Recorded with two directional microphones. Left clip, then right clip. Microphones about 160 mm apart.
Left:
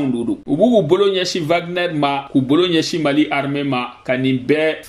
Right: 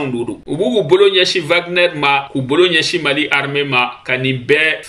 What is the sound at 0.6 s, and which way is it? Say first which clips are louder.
A man's voice: right 2 dB; 40° left (ahead or behind).